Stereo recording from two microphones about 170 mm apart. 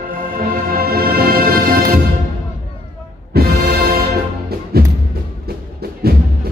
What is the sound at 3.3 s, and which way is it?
Music, 65° right (ahead or behind).